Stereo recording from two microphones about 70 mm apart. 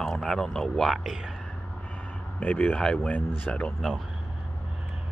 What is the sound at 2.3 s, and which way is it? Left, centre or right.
Speech, left.